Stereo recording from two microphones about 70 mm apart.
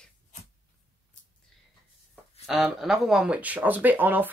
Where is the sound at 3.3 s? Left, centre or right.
Right.